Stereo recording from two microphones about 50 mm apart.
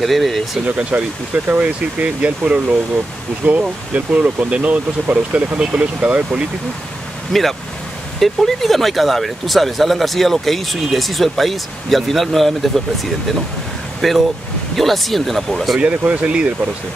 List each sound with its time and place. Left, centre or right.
0.0 s speech: centre
0.7 s speech: right
5.6 s speech: right
7.3 s speech: centre
15.8 s speech: right